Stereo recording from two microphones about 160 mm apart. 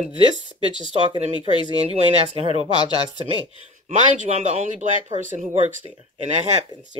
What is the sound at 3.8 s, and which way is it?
A woman's voice, 45° right (ahead or behind).